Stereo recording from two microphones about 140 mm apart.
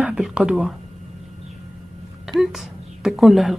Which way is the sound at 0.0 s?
5° right (ahead or behind).